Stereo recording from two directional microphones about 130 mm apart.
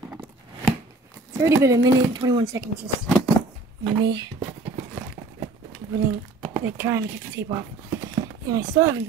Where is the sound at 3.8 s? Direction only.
40° right (ahead or behind).